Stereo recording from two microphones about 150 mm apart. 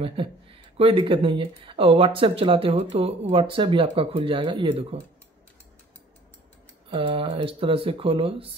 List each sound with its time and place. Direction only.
0.0 s speech: 35° right (ahead or behind)
6.9 s speech: 35° right (ahead or behind)